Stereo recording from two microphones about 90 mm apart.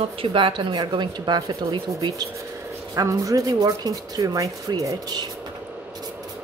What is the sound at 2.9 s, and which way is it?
Speech, 40° right (ahead or behind).